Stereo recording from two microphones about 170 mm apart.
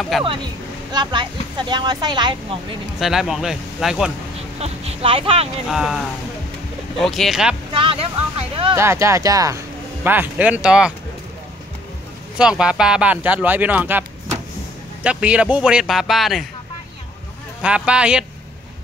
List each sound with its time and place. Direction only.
0.2 s speech: 30° right (ahead or behind)
3.0 s speech: centre (ahead or behind)
4.6 s speech: 35° right (ahead or behind)
5.7 s speech: centre (ahead or behind)
7.7 s speech: 30° right (ahead or behind)
8.7 s speech: 15° right (ahead or behind)
12.4 s speech: 5° right (ahead or behind)
15.0 s speech: 5° right (ahead or behind)
17.6 s speech: 5° right (ahead or behind)